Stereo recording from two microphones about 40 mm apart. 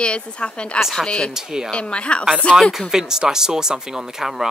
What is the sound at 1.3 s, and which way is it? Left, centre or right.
Speech, centre.